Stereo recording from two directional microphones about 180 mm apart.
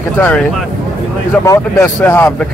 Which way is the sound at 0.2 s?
5° left (ahead or behind).